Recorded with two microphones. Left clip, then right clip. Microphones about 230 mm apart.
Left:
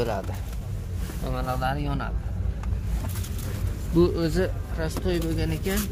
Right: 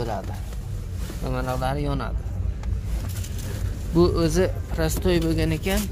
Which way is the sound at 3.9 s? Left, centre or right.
Centre.